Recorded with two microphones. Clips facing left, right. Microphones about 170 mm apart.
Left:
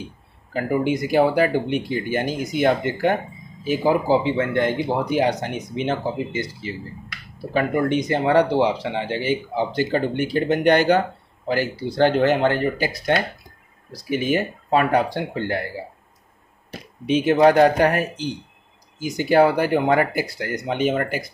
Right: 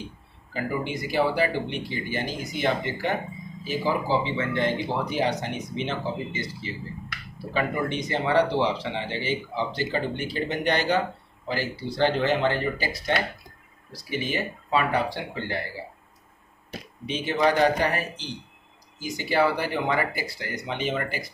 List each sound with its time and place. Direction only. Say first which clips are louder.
0.5 s speech: left 8 dB; 50° left (ahead or behind)
17.1 s speech: left 8 dB; 50° left (ahead or behind)